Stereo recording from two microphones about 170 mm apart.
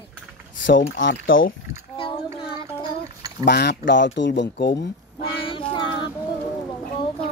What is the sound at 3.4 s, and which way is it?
Speech, 75° left (ahead or behind).